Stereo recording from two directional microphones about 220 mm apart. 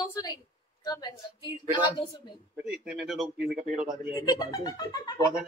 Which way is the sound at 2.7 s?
Centre (ahead or behind).